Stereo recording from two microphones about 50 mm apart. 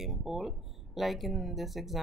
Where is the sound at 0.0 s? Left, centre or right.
Centre.